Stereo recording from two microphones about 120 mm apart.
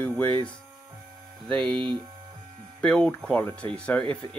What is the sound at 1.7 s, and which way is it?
Speech, 45° right (ahead or behind).